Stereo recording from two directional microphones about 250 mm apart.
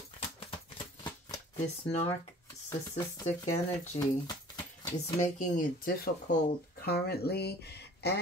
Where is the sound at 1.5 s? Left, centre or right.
Left.